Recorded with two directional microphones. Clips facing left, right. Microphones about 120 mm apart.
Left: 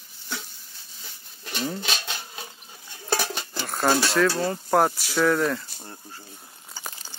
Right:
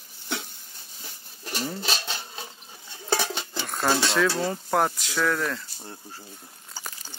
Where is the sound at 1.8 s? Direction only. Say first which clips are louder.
Right 1 dB; 35° right (ahead or behind).